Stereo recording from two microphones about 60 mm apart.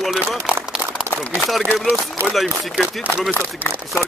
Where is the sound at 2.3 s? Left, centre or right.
Centre.